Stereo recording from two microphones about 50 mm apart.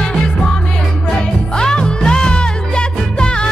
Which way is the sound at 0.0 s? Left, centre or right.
Centre.